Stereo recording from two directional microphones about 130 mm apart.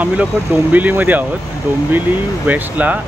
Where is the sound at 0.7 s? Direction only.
15° right (ahead or behind).